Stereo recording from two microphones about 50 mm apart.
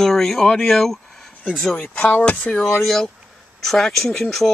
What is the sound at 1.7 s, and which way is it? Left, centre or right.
Speech, left.